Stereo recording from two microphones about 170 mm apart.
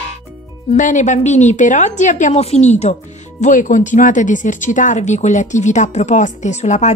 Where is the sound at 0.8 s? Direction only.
45° left (ahead or behind).